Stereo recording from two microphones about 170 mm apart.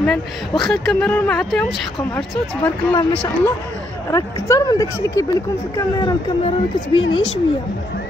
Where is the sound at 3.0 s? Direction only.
20° left (ahead or behind).